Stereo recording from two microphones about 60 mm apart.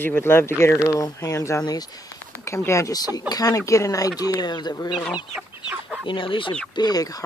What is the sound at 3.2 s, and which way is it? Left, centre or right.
Speech, left.